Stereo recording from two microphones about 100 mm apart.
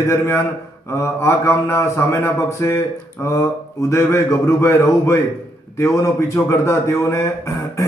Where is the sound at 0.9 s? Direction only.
30° left (ahead or behind).